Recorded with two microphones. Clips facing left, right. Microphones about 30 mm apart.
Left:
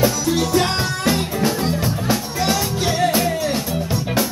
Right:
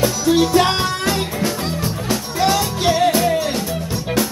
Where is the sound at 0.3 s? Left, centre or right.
Centre.